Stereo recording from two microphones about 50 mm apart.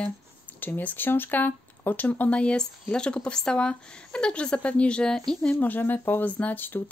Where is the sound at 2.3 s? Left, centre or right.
Left.